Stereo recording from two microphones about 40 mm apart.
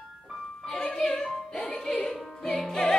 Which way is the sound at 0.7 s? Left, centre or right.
Centre.